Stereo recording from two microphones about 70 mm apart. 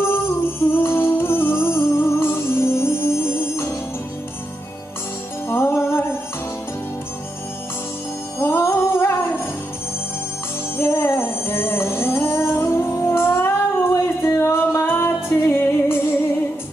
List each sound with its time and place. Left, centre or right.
0.0 s music: left
5.5 s music: left
8.4 s music: left
10.8 s music: left